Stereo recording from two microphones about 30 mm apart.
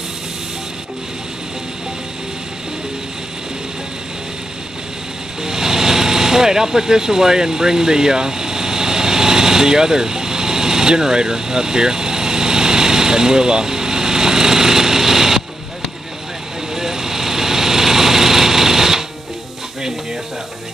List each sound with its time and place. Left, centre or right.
5.4 s vehicle: centre
16.7 s light engine: centre